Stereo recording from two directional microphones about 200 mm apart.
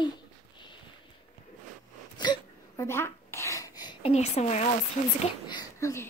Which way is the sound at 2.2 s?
20° left (ahead or behind).